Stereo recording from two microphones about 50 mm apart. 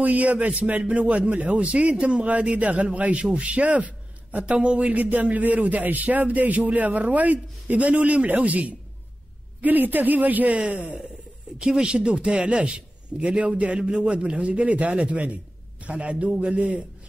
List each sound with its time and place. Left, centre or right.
0.0 s a man's voice: right